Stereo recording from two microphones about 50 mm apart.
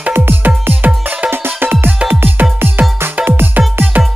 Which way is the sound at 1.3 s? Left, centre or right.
Right.